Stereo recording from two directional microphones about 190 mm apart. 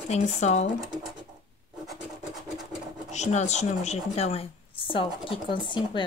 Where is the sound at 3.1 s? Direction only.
35° left (ahead or behind).